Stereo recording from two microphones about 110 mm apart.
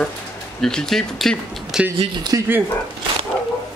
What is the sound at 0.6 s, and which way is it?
Speech, 5° left (ahead or behind).